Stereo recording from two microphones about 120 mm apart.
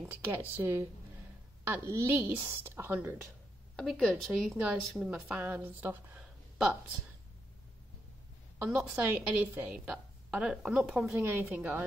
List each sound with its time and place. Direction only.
0.0 s a woman's voice: 15° right (ahead or behind)
3.7 s a woman's voice: 5° left (ahead or behind)
8.8 s a woman's voice: 15° right (ahead or behind)